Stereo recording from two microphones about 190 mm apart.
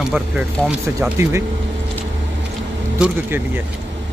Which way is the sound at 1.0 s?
15° right (ahead or behind).